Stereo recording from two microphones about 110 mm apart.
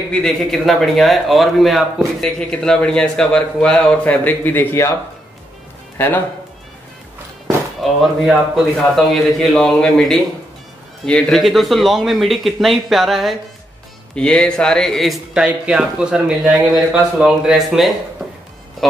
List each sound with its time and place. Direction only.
0.1 s a man's voice: 5° left (ahead or behind); by 4.9 s 20° left (ahead or behind)
5.9 s speech: 20° left (ahead or behind)
7.4 s a sound: centre (ahead or behind)
8.9 s speech: centre (ahead or behind)